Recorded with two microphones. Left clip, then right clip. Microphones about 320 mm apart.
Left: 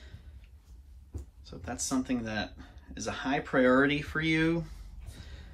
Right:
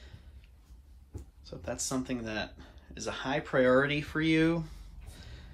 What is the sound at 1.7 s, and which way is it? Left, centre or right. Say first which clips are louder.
Speech: left 2 dB; centre.